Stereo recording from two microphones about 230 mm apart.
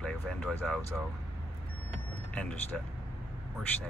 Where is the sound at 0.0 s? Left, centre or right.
Centre.